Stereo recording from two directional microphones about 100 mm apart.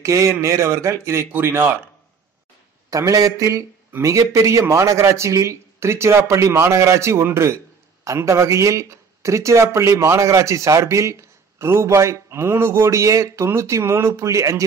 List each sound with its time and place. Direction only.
0.0 s speech: 30° right (ahead or behind)
2.9 s a man's voice: 35° right (ahead or behind)